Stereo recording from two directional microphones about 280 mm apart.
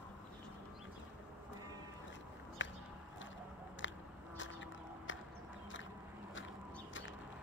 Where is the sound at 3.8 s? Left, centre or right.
Left.